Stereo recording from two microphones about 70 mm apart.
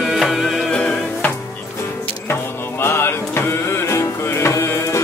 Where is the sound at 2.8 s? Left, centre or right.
Left.